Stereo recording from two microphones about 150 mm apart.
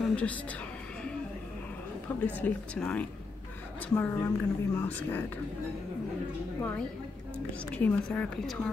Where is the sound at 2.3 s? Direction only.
10° left (ahead or behind).